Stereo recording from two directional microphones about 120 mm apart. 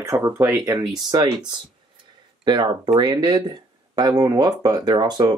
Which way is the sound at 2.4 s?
35° right (ahead or behind).